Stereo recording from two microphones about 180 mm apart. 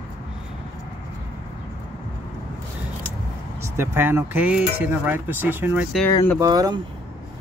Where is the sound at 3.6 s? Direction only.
15° right (ahead or behind).